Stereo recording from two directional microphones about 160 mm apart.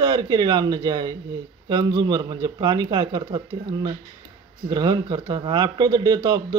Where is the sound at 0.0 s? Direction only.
25° right (ahead or behind).